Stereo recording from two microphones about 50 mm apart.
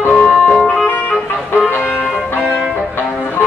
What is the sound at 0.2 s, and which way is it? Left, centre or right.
Organ, left.